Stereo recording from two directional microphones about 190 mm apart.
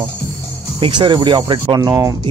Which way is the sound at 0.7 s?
25° right (ahead or behind).